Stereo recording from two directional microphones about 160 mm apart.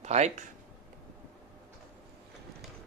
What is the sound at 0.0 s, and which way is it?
Speech, 45° right (ahead or behind).